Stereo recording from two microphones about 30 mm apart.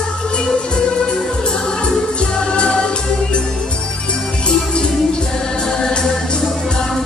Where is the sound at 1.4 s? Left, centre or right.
Left.